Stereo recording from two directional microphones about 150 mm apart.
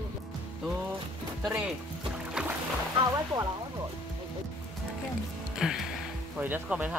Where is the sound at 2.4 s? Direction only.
5° right (ahead or behind).